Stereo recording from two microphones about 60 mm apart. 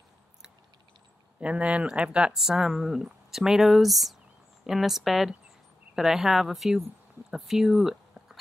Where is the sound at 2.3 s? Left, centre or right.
Centre.